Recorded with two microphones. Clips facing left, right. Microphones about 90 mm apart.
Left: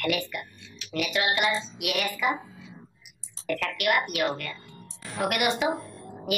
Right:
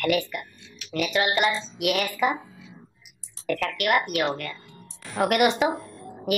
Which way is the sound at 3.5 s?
45° right (ahead or behind).